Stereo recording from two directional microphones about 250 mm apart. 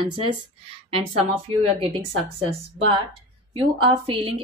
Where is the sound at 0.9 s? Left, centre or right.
Right.